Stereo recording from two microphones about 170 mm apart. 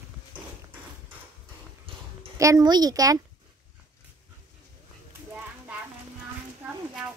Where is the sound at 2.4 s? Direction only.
20° right (ahead or behind).